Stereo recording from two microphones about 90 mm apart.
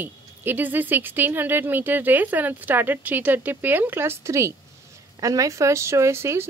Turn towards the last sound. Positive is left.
turn(degrees=-30)  # may be behind; listen again after turning